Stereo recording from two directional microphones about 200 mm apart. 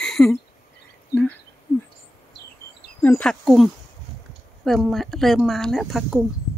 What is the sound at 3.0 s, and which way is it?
Speech, 5° left (ahead or behind).